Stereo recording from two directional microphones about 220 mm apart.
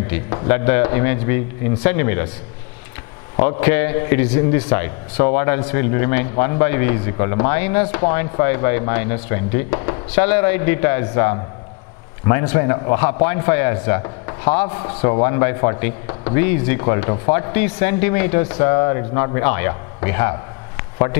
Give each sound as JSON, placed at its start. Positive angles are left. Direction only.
{"t": 0.1, "sound": "speech", "side_deg": 15}
{"t": 3.3, "sound": "speech", "side_deg": 10}